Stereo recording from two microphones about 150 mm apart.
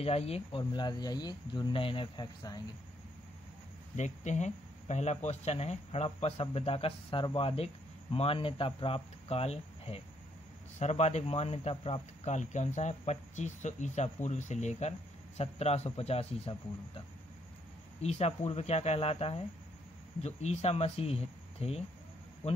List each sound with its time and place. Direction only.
0.0 s speech: 40° left (ahead or behind)
3.9 s speech: 50° left (ahead or behind)
18.0 s speech: 45° left (ahead or behind)